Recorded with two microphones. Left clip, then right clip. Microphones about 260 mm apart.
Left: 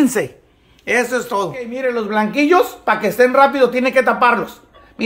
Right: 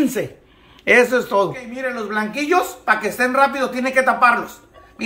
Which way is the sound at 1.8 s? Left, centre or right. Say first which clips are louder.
Left 5 dB; left.